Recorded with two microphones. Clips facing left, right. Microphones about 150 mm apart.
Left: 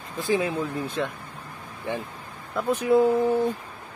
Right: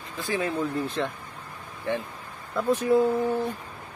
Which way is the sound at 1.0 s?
Centre (ahead or behind).